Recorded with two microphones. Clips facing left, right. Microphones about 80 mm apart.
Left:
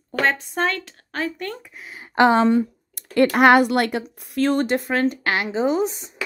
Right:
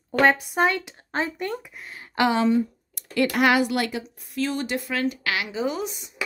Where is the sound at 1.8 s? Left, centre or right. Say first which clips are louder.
Left 2 dB; centre.